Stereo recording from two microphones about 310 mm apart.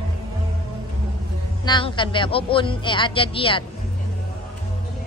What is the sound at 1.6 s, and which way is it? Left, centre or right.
A man's voice, centre.